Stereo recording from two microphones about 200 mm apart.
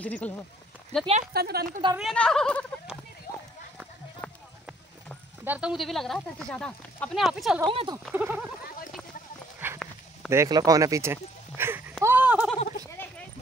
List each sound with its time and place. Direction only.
0.0 s speech: 5° left (ahead or behind)
1.3 s a woman's voice: 50° right (ahead or behind)
2.0 s speech: 5° left (ahead or behind)
4.2 s clip-clop: 5° left (ahead or behind)
5.4 s speech: 5° right (ahead or behind)
7.6 s speech: 25° right (ahead or behind)
8.1 s speech: 10° right (ahead or behind)
9.6 s clip-clop: 10° right (ahead or behind)
10.3 s speech: 15° right (ahead or behind)
12.0 s a sound: 10° right (ahead or behind)